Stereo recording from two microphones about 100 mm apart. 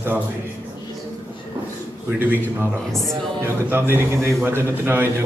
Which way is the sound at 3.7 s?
25° right (ahead or behind).